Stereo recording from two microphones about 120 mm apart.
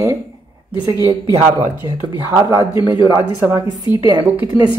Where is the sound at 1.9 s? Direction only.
25° right (ahead or behind).